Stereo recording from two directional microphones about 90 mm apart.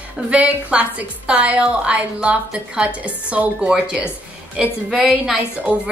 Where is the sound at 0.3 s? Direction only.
15° right (ahead or behind).